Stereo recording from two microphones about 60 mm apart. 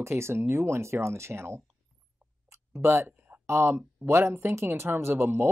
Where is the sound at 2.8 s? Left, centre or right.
Right.